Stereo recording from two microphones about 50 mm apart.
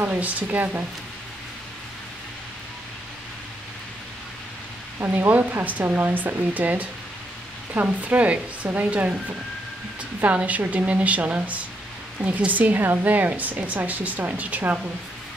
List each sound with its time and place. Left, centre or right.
0.1 s a woman's voice: right
5.3 s a woman's voice: right
10.2 s a woman's voice: right